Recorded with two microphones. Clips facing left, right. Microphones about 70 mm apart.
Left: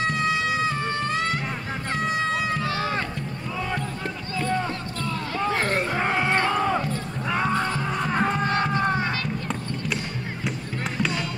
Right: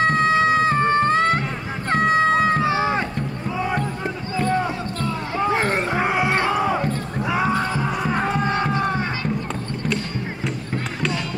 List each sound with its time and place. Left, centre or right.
0.0 s music: right
2.6 s run: right
5.0 s a sound: right
7.2 s music: centre
8.5 s music: right